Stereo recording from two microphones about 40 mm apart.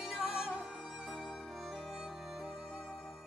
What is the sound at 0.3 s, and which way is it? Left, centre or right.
Music, centre.